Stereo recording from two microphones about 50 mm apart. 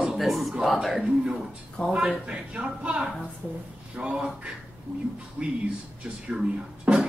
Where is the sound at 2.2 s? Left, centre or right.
Right.